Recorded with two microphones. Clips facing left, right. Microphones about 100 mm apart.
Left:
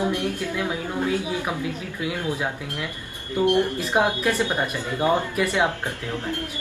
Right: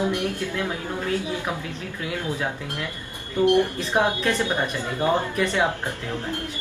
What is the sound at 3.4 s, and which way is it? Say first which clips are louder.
Speech: right 1 dB; 15° left (ahead or behind).